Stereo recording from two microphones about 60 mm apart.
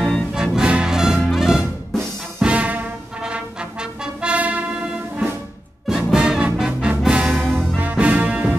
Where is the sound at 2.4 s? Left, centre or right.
Right.